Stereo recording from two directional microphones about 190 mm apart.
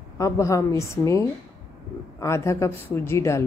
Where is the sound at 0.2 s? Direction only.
15° left (ahead or behind).